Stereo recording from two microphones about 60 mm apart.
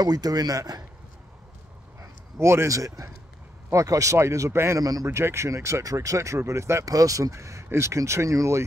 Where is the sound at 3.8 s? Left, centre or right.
Right.